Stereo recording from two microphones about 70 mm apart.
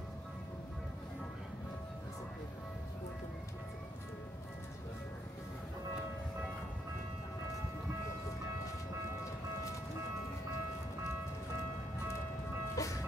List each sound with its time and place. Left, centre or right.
12.7 s music: left